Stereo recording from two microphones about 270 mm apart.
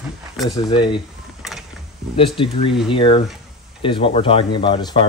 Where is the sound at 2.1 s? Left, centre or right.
Centre.